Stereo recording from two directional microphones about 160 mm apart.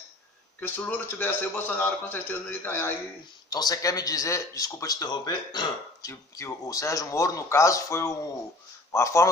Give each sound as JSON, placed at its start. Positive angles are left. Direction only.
{"t": 0.6, "sound": "a man's voice", "side_deg": 10}
{"t": 3.4, "sound": "a man's voice", "side_deg": 25}